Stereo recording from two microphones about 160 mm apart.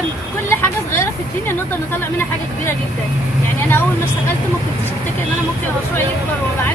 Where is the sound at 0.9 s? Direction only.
15° left (ahead or behind).